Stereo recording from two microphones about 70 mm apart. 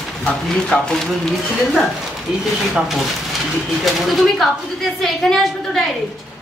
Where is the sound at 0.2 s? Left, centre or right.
Centre.